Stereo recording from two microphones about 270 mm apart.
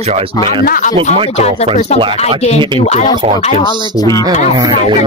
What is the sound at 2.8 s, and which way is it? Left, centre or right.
Speech, left.